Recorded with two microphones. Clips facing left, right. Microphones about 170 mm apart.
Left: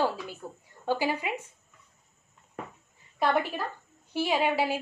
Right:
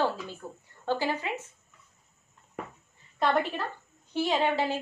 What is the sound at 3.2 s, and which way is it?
A woman's voice, 10° left (ahead or behind).